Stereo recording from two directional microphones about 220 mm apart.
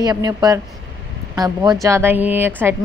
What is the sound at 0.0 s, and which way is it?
A woman's voice, 15° right (ahead or behind).